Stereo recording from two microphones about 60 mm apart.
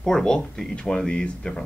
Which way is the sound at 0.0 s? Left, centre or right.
Centre.